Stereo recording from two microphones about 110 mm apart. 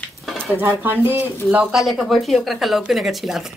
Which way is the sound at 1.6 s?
5° right (ahead or behind).